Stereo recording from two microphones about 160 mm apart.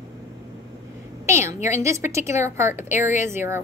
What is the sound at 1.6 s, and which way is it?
A woman's voice, 20° right (ahead or behind).